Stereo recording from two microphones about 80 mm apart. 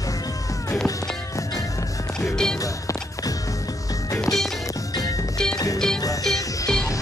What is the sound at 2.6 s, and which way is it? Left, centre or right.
Music, left.